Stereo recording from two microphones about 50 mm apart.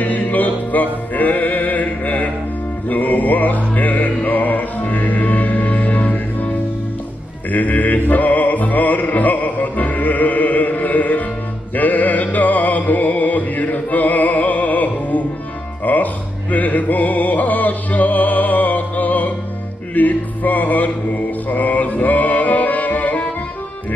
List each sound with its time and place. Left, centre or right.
0.0 s music: left
7.5 s a sound: left
8.1 s music: left